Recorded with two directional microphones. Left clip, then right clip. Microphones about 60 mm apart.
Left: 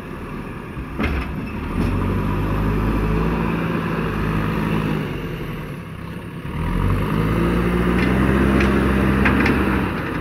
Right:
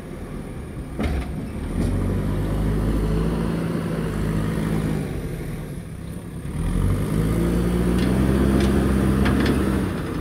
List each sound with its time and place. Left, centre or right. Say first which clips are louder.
3.0 s vehicle: left 4 dB; centre
6.9 s vehicle: left 4 dB; right
8.5 s vehicle: left 3 dB; right
9.5 s vehicle: left 4 dB; centre